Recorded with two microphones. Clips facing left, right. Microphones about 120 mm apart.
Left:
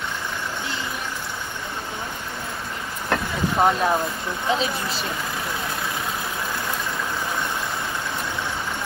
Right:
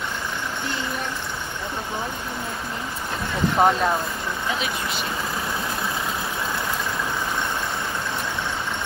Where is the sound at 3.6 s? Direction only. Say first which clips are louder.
Right 1 dB; 5° right (ahead or behind).